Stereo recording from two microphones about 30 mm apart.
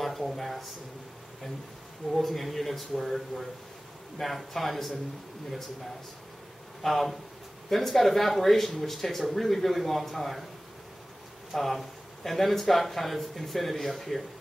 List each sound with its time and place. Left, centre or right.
0.0 s speech: centre
2.1 s speech: centre
6.8 s speech: centre
11.5 s speech: centre